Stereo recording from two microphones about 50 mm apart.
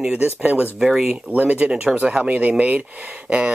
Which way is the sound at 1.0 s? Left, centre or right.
Right.